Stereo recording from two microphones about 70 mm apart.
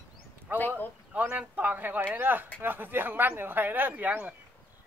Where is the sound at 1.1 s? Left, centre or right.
Right.